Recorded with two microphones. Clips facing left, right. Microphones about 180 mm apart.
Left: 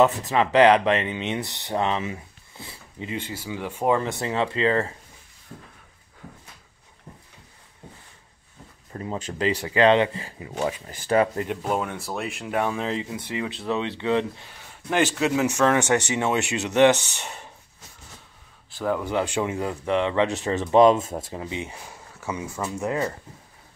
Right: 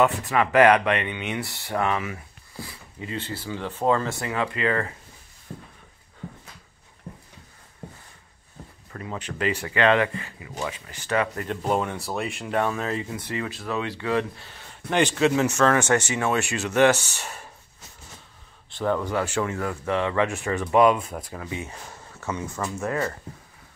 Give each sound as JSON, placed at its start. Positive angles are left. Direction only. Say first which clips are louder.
{"t": 0.3, "sound": "speech", "louder": "right 1 dB", "side_deg": 20}
{"t": 3.2, "sound": "speech", "louder": "right 1 dB", "side_deg": 10}
{"t": 8.9, "sound": "speech", "louder": "left 3 dB", "side_deg": 30}
{"t": 11.6, "sound": "speech", "louder": "right 1 dB", "side_deg": 0}
{"t": 14.5, "sound": "speech", "louder": "right 1 dB", "side_deg": 5}
{"t": 18.8, "sound": "speech", "louder": "even", "side_deg": 10}